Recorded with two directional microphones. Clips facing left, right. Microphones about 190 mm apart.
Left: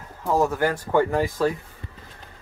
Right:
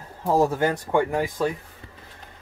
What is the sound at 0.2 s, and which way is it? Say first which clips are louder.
Speech: right 1 dB; 30° right (ahead or behind).